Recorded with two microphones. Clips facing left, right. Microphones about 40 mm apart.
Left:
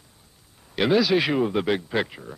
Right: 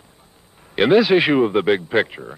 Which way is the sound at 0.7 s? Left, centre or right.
Right.